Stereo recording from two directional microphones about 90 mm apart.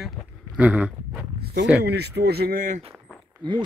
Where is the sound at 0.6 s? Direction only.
15° right (ahead or behind).